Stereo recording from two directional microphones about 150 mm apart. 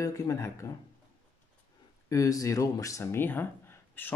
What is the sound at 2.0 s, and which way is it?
Speech, 20° left (ahead or behind).